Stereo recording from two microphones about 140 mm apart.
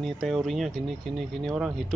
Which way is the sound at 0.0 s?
Centre (ahead or behind).